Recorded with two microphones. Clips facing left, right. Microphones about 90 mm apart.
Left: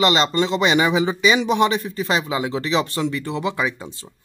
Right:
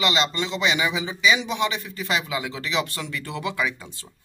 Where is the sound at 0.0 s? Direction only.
40° left (ahead or behind).